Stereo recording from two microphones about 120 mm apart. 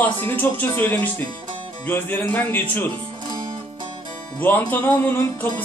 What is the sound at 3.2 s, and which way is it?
Music, 40° right (ahead or behind).